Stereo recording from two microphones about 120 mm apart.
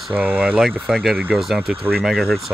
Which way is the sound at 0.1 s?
15° right (ahead or behind).